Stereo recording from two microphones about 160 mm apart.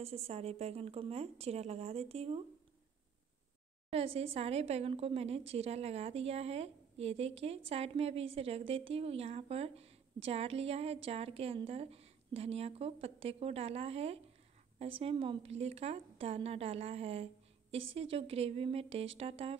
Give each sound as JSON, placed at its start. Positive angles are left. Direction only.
{"t": 0.0, "sound": "a woman's voice", "side_deg": -40}
{"t": 3.9, "sound": "a woman's voice", "side_deg": -35}